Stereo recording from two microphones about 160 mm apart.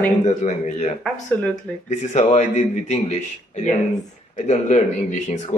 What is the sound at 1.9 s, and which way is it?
Speech, 45° left (ahead or behind).